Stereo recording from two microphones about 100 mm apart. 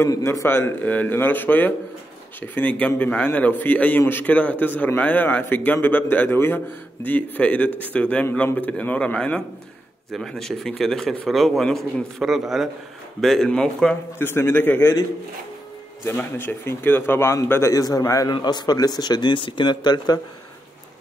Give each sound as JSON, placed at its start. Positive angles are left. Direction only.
{"t": 0.2, "sound": "a man's voice", "side_deg": 25}
{"t": 14.1, "sound": "speech", "side_deg": 25}
{"t": 16.2, "sound": "speech", "side_deg": 20}
{"t": 18.3, "sound": "a man's voice", "side_deg": 45}